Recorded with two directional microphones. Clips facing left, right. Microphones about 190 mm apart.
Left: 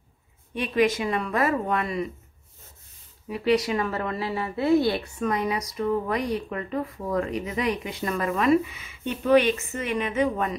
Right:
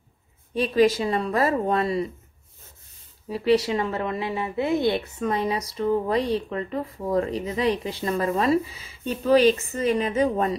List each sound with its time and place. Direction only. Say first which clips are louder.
0.6 s speech: right 3 dB; 35° right (ahead or behind)
3.3 s speech: right 2 dB; 30° right (ahead or behind)